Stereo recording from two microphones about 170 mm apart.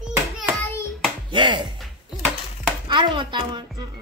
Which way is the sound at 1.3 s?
30° right (ahead or behind).